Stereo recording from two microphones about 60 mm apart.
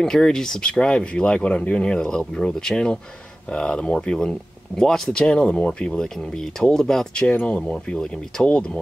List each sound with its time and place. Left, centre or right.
0.0 s speech: centre
7.2 s speech: left